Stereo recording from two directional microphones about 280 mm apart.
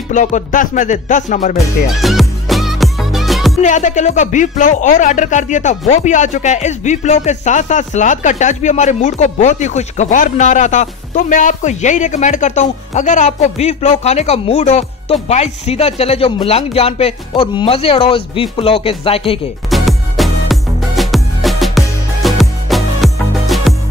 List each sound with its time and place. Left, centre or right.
0.1 s speech: left
2.0 s music: centre
3.5 s speech: left
19.7 s music: centre